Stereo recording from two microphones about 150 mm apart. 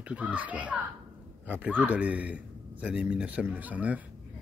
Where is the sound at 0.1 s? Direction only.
10° right (ahead or behind).